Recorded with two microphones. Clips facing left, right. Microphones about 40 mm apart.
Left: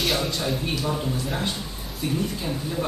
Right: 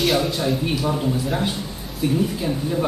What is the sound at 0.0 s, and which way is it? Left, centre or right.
Speech, centre.